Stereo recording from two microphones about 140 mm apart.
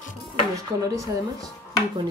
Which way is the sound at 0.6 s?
25° right (ahead or behind).